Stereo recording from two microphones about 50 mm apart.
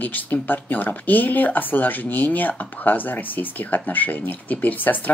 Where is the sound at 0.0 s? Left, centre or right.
Left.